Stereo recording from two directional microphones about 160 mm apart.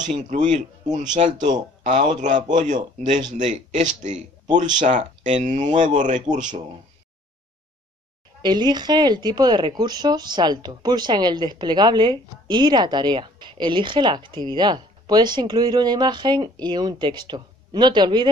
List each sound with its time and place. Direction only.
0.1 s speech: 50° right (ahead or behind)
8.4 s a woman's voice: 25° right (ahead or behind)